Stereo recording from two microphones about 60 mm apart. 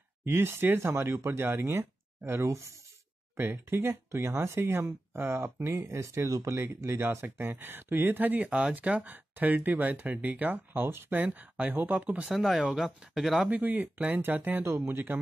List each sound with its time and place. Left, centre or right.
0.2 s speech: right
3.3 s speech: right
7.0 s speech: right
8.5 s speech: right
11.1 s speech: right
12.3 s speech: centre
13.5 s speech: right